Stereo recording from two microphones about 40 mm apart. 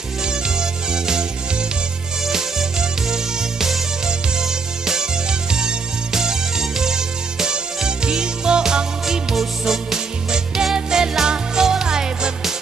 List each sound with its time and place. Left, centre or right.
0.2 s music: centre
2.2 s music: centre
5.5 s music: centre
9.0 s music: centre